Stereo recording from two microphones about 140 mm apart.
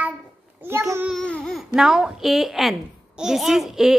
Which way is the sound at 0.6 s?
15° right (ahead or behind).